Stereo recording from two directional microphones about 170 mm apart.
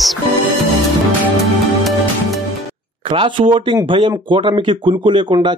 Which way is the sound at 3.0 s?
30° right (ahead or behind).